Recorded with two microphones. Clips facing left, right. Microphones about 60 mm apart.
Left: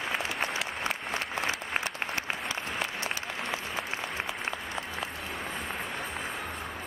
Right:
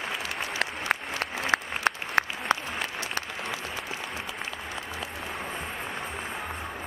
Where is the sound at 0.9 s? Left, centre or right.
Right.